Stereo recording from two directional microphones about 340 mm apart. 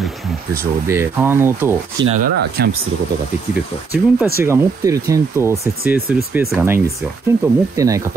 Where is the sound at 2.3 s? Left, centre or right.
Right.